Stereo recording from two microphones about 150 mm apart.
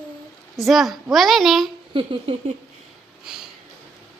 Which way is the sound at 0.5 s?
Centre (ahead or behind).